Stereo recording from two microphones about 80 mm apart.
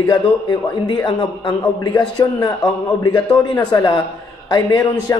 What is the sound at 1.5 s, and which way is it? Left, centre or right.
A man's voice, left.